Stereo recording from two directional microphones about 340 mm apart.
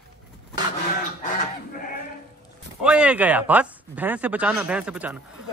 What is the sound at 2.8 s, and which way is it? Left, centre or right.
A man's voice, centre.